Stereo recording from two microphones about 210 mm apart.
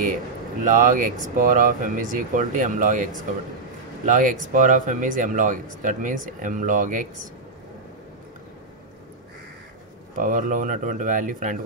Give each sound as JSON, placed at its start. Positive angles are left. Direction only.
{"t": 0.7, "sound": "speech", "side_deg": -35}
{"t": 10.1, "sound": "speech", "side_deg": -40}